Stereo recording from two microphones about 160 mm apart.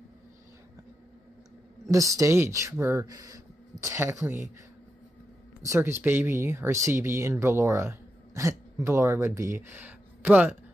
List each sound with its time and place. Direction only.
1.9 s speech: 20° right (ahead or behind)
5.6 s speech: 15° right (ahead or behind)